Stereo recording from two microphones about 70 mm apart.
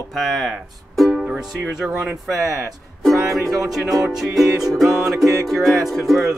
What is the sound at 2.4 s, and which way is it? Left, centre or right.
Speech, right.